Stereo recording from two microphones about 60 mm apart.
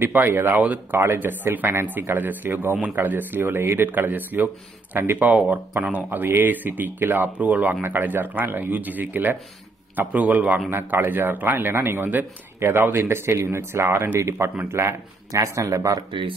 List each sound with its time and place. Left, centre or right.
0.0 s a man's voice: right
10.7 s a man's voice: right
15.3 s speech: right